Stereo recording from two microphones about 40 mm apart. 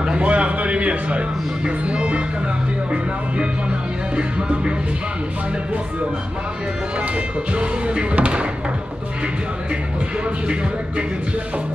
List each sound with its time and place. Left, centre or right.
0.2 s a sound: right
1.9 s music: right
4.2 s music: right
7.5 s music: right